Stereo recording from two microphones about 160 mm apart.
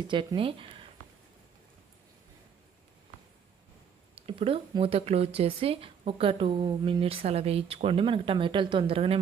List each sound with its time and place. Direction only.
0.1 s speech: 30° right (ahead or behind)
4.3 s speech: 35° right (ahead or behind)